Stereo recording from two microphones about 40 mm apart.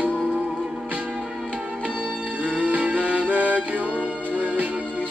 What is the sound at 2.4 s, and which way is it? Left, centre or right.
Music, right.